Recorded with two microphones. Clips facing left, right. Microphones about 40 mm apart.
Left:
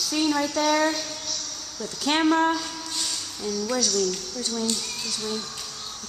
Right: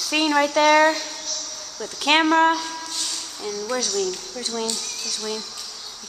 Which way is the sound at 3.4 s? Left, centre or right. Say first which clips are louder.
Even; centre.